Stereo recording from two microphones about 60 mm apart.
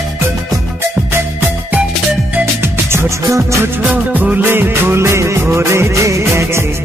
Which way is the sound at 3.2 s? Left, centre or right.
Right.